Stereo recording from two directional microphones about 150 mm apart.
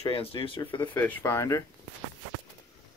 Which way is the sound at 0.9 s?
15° left (ahead or behind).